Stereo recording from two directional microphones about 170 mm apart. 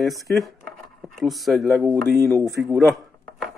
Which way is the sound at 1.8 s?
20° right (ahead or behind).